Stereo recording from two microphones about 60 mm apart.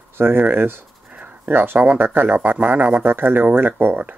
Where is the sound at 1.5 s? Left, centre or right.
Right.